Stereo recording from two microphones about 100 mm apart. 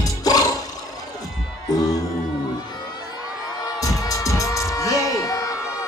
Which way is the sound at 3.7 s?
35° left (ahead or behind).